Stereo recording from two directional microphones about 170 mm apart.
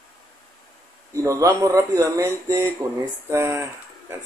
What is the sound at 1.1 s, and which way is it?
Speech, 20° right (ahead or behind).